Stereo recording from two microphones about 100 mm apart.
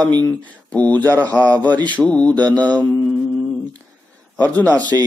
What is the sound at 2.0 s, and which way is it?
Speech, 10° left (ahead or behind).